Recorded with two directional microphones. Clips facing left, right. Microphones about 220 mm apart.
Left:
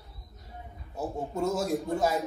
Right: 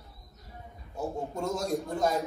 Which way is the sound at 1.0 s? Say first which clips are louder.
Left 2 dB; 5° left (ahead or behind).